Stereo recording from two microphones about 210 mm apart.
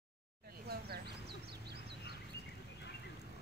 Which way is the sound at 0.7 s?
50° right (ahead or behind).